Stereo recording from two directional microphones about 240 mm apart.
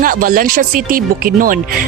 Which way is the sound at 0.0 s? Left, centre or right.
Right.